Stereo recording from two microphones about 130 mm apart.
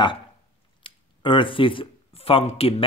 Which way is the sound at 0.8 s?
40° left (ahead or behind).